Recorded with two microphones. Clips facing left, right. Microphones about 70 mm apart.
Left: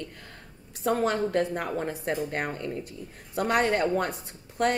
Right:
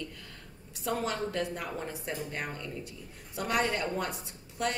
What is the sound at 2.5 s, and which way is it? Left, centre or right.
Speech, left.